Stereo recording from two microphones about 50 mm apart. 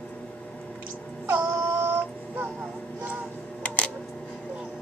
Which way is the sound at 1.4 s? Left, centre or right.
Right.